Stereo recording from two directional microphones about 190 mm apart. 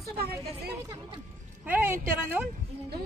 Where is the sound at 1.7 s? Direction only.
10° right (ahead or behind).